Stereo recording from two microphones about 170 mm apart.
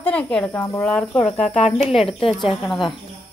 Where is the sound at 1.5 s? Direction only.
40° left (ahead or behind).